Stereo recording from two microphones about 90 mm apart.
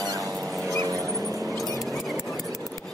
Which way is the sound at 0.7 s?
40° right (ahead or behind).